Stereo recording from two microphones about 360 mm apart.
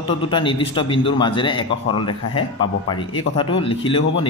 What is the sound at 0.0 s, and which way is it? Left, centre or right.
A man's voice, centre.